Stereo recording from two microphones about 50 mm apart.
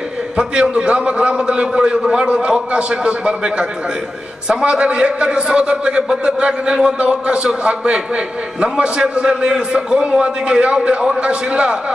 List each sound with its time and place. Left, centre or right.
0.4 s a man's voice: centre